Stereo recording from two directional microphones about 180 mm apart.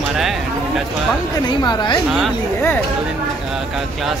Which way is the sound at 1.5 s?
25° left (ahead or behind).